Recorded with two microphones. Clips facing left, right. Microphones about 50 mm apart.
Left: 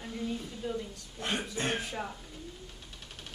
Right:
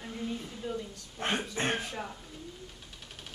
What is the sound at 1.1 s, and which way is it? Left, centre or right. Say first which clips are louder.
Speech: right 2 dB; right.